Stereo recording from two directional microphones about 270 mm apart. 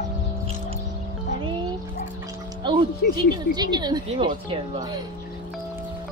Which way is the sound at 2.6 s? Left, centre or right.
Centre.